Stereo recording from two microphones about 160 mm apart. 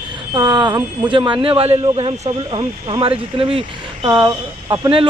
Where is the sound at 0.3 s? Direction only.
30° right (ahead or behind).